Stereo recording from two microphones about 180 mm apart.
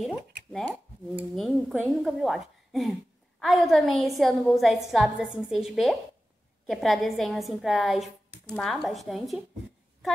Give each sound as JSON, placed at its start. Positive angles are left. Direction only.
{"t": 0.5, "sound": "a woman's voice", "side_deg": 0}